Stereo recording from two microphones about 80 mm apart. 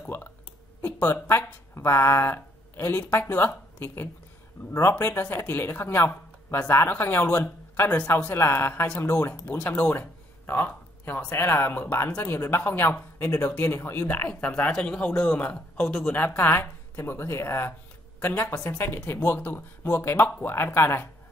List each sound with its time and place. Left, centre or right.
0.0 s a woman's voice: left
5.1 s a woman's voice: left
9.9 s a sound: left
11.4 s a woman's voice: left
13.8 s a woman's voice: left